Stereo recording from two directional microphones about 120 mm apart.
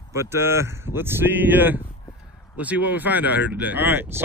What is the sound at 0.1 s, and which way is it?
Speech, 20° right (ahead or behind).